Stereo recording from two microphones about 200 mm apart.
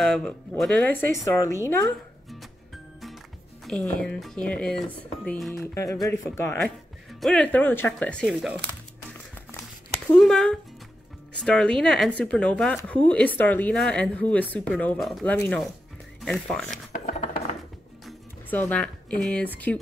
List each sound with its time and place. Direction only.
0.0 s speech: 5° left (ahead or behind)
1.1 s speech: 15° left (ahead or behind)
3.6 s speech: 5° left (ahead or behind)
7.1 s speech: centre (ahead or behind)
10.1 s speech: 5° left (ahead or behind)
16.9 s a sound: 40° left (ahead or behind)
18.0 s speech: 10° left (ahead or behind)